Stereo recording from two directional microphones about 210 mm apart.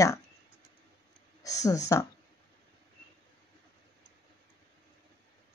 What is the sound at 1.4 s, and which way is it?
Speech, 15° left (ahead or behind).